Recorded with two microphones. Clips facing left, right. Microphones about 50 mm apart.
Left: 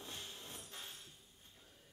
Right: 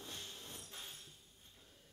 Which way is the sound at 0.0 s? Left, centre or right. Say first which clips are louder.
Even; centre.